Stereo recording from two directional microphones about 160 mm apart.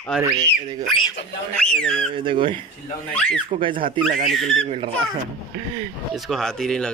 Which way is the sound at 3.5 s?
35° right (ahead or behind).